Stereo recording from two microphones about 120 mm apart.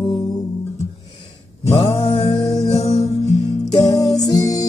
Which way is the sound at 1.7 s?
50° left (ahead or behind).